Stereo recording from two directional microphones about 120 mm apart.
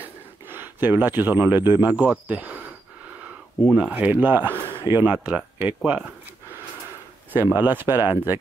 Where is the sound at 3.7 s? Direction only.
10° right (ahead or behind).